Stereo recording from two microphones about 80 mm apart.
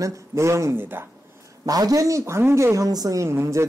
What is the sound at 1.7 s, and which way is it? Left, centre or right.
Speech, right.